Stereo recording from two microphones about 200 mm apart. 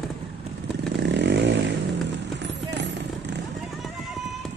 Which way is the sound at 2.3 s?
60° right (ahead or behind).